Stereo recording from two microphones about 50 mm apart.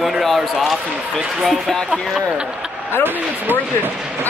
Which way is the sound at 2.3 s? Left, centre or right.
Centre.